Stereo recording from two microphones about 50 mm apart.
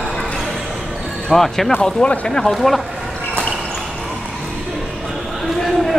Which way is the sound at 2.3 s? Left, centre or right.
Centre.